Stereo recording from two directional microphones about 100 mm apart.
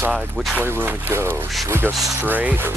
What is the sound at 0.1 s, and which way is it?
Speech, centre (ahead or behind).